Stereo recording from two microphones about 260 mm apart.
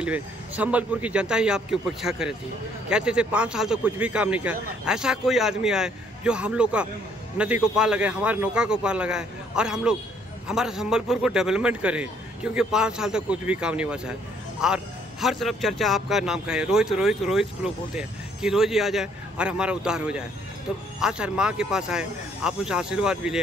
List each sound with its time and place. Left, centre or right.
0.0 s a man's voice: centre